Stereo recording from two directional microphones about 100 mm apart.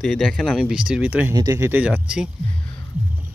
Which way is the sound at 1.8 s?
10° right (ahead or behind).